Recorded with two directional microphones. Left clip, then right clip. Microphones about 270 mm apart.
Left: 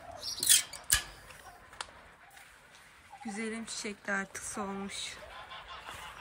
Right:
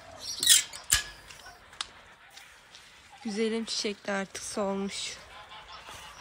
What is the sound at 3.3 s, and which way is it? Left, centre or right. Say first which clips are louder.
Speech: right 9 dB; centre.